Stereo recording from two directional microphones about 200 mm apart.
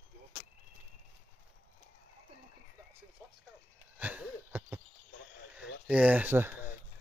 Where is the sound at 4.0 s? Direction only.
10° right (ahead or behind).